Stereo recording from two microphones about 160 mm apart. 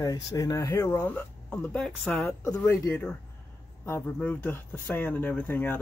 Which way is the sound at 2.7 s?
15° left (ahead or behind).